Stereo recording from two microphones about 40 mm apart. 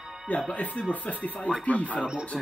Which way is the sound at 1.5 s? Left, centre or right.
Left.